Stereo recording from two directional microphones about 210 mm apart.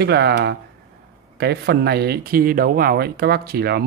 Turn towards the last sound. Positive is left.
turn(degrees=-50)  # may be behind; listen again after turning